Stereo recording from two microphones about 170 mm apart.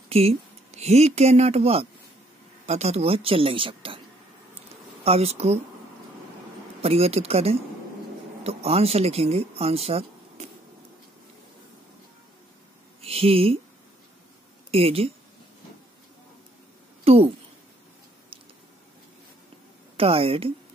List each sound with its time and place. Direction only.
0.1 s speech: 35° right (ahead or behind)
4.6 s a sound: 35° right (ahead or behind)
6.8 s speech: 35° right (ahead or behind)
13.0 s speech: 35° right (ahead or behind)
14.7 s speech: 35° right (ahead or behind)
17.0 s a woman's voice: 35° right (ahead or behind)
20.0 s speech: 35° right (ahead or behind)